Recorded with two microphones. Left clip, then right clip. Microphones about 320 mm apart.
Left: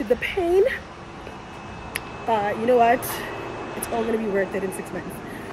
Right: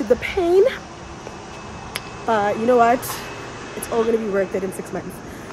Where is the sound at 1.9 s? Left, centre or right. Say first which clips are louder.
Right 3 dB; centre.